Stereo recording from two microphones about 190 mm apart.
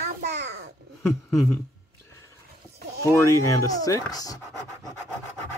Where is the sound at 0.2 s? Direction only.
65° right (ahead or behind).